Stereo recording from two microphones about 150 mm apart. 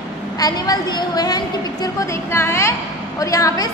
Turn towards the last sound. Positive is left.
turn(degrees=20)  # may be behind; listen again after turning